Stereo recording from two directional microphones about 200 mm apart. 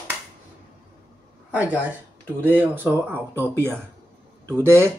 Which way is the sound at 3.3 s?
10° left (ahead or behind).